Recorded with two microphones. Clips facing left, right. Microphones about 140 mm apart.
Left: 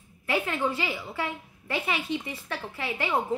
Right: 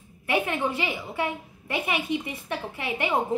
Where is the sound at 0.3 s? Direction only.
20° right (ahead or behind).